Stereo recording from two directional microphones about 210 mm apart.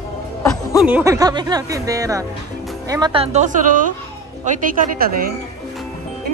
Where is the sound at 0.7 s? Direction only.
5° right (ahead or behind).